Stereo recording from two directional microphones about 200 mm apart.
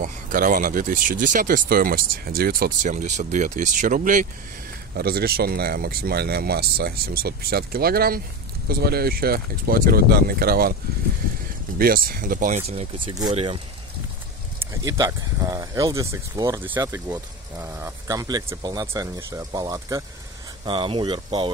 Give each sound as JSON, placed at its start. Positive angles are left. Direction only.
{"t": 0.0, "sound": "speech", "side_deg": -45}
{"t": 11.8, "sound": "speech", "side_deg": -45}
{"t": 14.7, "sound": "speech", "side_deg": -15}